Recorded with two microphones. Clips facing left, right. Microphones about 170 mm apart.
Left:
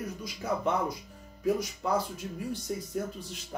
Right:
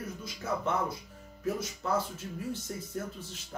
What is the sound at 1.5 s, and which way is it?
Speech, 15° left (ahead or behind).